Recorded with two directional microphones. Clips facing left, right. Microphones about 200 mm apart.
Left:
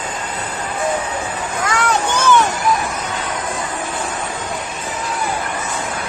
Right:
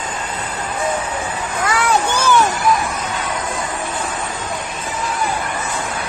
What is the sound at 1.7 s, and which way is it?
Children playing, 10° right (ahead or behind).